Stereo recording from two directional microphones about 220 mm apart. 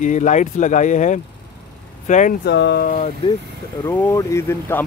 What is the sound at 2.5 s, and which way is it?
Speech, 50° left (ahead or behind).